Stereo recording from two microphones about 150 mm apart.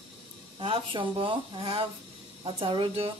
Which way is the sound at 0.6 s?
35° right (ahead or behind).